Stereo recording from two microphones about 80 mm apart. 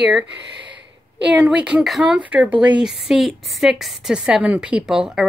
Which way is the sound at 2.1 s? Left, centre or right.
Centre.